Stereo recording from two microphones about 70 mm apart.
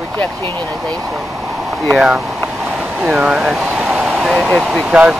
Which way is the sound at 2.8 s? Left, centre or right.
Centre.